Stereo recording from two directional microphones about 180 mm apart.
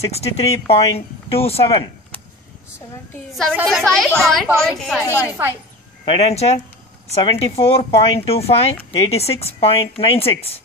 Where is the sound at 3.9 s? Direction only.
Centre (ahead or behind).